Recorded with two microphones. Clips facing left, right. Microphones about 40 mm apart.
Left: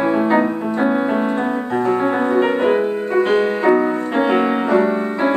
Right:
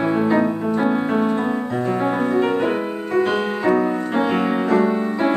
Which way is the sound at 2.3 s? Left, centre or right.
Centre.